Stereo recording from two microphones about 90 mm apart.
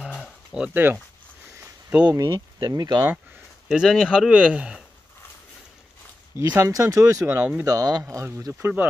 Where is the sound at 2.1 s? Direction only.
50° right (ahead or behind).